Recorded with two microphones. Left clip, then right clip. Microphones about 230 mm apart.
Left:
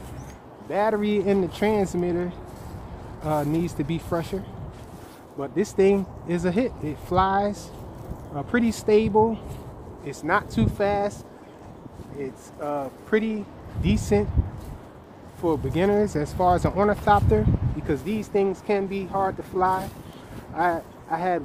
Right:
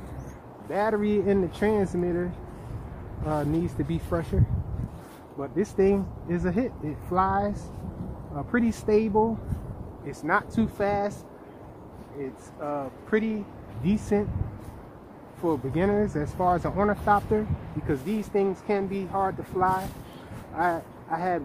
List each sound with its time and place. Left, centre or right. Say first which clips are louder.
0.7 s speech: left 2 dB; left
3.3 s speech: left 3 dB; left
5.4 s speech: left 3 dB; left
12.6 s speech: left 3 dB; left
15.4 s speech: left 3 dB; left